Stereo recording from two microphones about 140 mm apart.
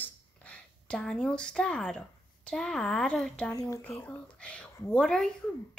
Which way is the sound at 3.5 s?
25° left (ahead or behind).